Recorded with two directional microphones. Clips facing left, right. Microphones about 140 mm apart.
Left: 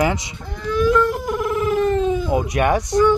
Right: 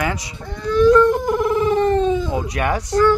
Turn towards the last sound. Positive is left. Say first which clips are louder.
# left 1 dB
turn(degrees=20)  # may be behind; listen again after turning